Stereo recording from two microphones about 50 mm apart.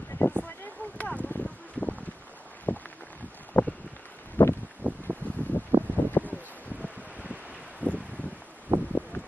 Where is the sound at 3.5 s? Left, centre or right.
Left.